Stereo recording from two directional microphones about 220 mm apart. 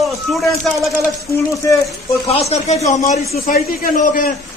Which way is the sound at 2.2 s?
30° left (ahead or behind).